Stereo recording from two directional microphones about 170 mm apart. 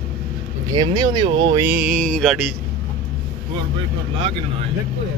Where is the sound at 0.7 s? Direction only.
25° right (ahead or behind).